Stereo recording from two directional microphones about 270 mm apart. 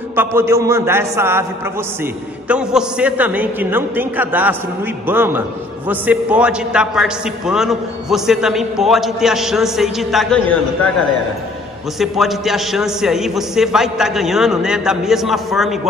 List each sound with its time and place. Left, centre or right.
0.1 s a man's voice: centre
2.4 s a man's voice: centre
12.0 s a man's voice: centre